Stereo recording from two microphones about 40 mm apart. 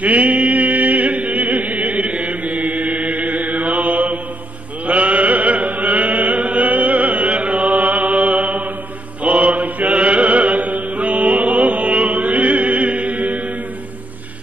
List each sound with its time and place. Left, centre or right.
0.0 s a sound: right
4.8 s chant: right
9.2 s mantra: right